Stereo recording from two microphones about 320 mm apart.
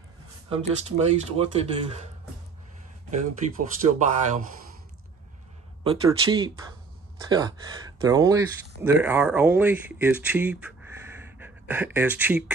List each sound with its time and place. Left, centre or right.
0.5 s speech: right
3.1 s speech: right
5.9 s speech: centre